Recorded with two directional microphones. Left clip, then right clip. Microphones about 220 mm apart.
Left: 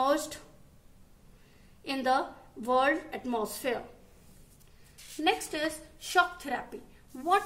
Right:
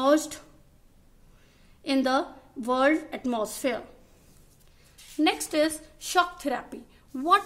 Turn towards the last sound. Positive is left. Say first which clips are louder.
# right 5 dB
turn(degrees=-50)  # may be behind; listen again after turning